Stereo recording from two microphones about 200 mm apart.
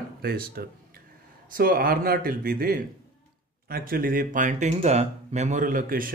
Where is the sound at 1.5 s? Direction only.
45° right (ahead or behind).